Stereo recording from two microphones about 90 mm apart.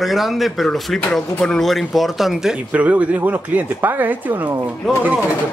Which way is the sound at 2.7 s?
15° right (ahead or behind).